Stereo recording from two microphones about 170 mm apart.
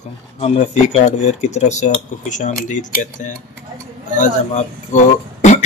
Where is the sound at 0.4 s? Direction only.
40° left (ahead or behind).